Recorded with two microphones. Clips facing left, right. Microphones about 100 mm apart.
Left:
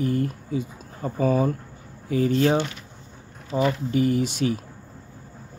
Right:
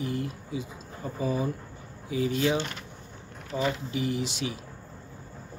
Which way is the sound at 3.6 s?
45° left (ahead or behind).